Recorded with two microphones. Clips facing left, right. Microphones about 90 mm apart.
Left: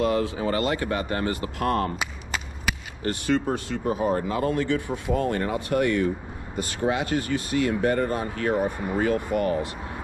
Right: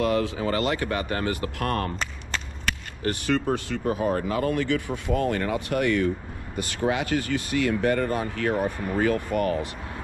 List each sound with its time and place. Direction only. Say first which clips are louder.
0.0 s speech: even; 25° left (ahead or behind)
3.3 s speech: left 1 dB; 20° left (ahead or behind)